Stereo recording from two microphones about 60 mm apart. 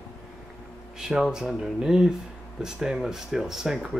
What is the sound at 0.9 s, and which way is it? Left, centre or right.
A man's voice, centre.